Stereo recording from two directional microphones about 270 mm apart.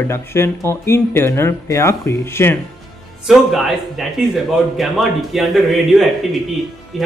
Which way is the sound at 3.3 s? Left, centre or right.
Centre.